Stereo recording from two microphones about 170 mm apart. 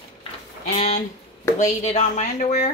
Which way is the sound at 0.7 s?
45° left (ahead or behind).